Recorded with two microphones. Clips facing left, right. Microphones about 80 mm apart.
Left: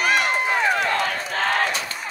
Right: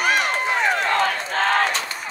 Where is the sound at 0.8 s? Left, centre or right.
Right.